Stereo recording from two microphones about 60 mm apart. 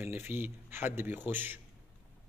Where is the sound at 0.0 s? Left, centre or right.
Right.